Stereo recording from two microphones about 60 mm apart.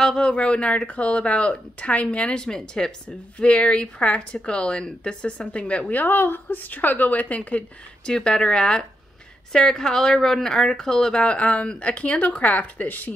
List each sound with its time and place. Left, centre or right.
0.0 s speech: centre; by 13.1 s left